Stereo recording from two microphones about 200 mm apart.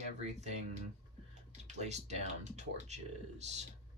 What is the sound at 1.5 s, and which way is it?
Speech, 35° right (ahead or behind).